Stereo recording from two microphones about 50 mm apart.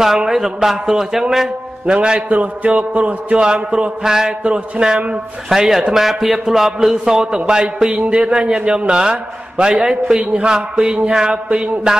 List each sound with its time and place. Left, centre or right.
0.0 s a man's voice: centre
2.2 s a man's voice: right; by 4.4 s centre
4.4 s a man's voice: right
5.5 s a man's voice: centre
7.9 s a man's voice: right